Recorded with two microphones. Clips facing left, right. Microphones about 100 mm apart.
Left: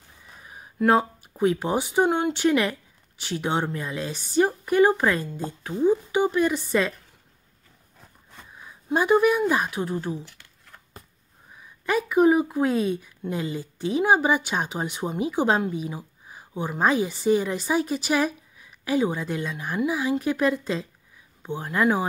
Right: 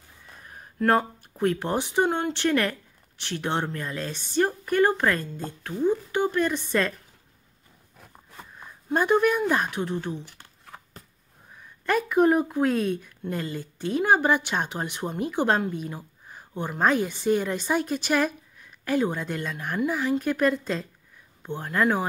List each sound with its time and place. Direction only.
0.3 s speech: 5° left (ahead or behind)
8.5 s speech: 5° left (ahead or behind)
10.2 s shuffling cards: 50° right (ahead or behind)
11.5 s a sound: 5° left (ahead or behind)
12.4 s a woman's voice: 5° left (ahead or behind)